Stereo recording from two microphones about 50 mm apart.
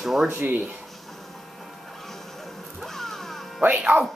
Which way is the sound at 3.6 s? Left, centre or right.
Right.